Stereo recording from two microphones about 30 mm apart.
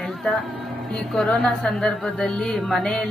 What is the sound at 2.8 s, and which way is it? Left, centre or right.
Speech, left.